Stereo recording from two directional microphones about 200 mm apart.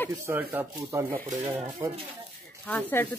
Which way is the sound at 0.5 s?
10° right (ahead or behind).